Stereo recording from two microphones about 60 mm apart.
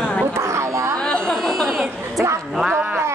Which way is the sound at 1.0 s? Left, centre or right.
Centre.